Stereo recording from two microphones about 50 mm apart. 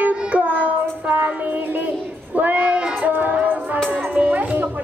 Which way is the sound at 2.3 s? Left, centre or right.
Right.